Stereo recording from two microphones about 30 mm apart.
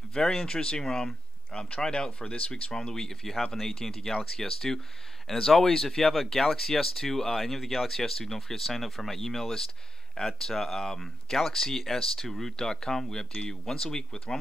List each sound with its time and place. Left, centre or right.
0.1 s speech: left
1.5 s speech: left
2.5 s speech: left